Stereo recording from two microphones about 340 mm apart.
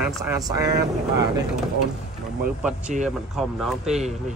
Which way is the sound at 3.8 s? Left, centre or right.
Centre.